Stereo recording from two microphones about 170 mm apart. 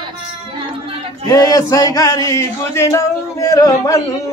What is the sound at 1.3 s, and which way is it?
Speech, 20° left (ahead or behind).